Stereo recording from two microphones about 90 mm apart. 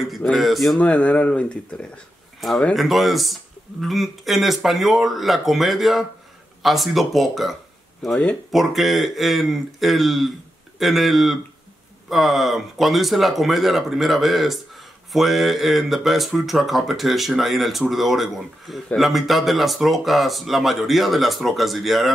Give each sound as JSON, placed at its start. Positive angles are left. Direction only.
{"t": 0.0, "sound": "speech", "side_deg": 0}
{"t": 0.7, "sound": "speech", "side_deg": 15}
{"t": 2.7, "sound": "speech", "side_deg": 0}